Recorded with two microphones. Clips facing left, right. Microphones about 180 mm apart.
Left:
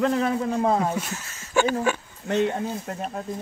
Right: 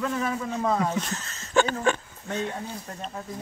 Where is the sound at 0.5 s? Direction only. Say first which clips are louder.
Left 1 dB; 30° left (ahead or behind).